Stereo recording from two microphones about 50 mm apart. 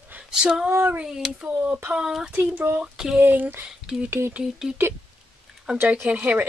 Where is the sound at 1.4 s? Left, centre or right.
Right.